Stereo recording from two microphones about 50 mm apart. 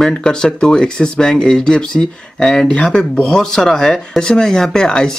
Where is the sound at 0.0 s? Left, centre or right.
Centre.